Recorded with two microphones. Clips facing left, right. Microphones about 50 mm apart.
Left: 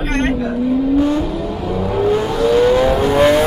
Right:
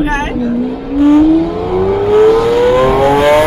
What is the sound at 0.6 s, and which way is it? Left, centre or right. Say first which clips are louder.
Speech: left 2 dB; right.